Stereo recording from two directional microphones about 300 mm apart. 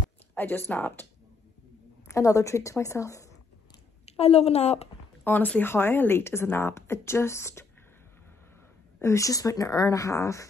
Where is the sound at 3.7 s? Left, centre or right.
Centre.